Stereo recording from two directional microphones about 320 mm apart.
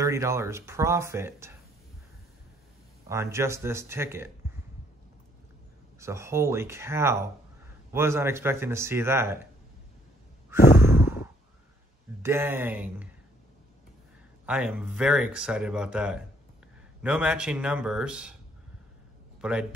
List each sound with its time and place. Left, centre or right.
0.0 s speech: centre
3.1 s speech: centre
5.9 s speech: centre
10.8 s sigh: centre
12.2 s speech: centre
14.4 s speech: centre